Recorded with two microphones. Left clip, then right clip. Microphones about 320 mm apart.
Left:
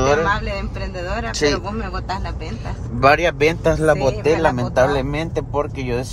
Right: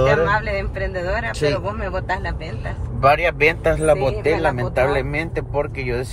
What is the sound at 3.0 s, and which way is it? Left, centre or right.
Speech, left.